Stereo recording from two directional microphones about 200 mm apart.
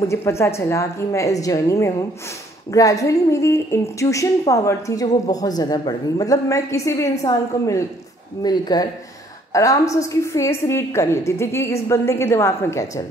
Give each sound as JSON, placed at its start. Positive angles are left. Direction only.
{"t": 0.1, "sound": "a woman's voice", "side_deg": 15}